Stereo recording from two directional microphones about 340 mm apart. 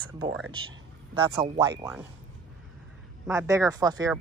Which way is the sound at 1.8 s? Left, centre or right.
Centre.